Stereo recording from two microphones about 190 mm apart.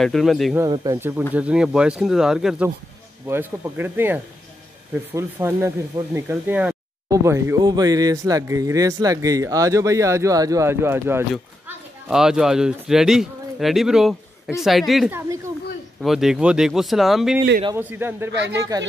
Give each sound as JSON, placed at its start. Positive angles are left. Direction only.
{"t": 0.0, "sound": "speech", "side_deg": 0}
{"t": 0.6, "sound": "speech", "side_deg": -15}
{"t": 15.1, "sound": "speech", "side_deg": -15}
{"t": 16.0, "sound": "speech", "side_deg": 0}